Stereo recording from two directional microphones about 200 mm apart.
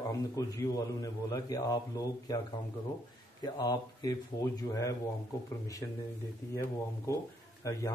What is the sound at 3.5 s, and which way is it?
A man's voice, 20° left (ahead or behind).